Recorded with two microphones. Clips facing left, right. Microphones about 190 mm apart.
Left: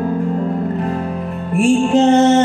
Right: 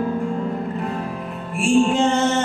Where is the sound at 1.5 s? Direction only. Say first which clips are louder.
Left 4 dB; 40° left (ahead or behind).